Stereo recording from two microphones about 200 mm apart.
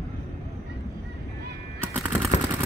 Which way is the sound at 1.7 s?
10° right (ahead or behind).